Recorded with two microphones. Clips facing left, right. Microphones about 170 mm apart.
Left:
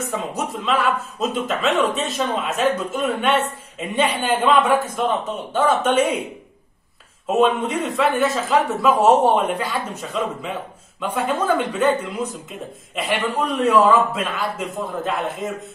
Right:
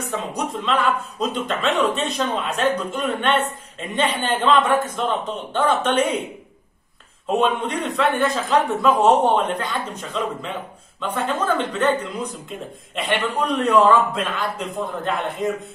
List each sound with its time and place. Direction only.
0.1 s a man's voice: 5° left (ahead or behind)
7.2 s speech: 5° left (ahead or behind)